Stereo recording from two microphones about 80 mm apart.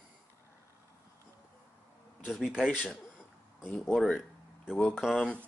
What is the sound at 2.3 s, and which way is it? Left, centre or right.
Speech, centre.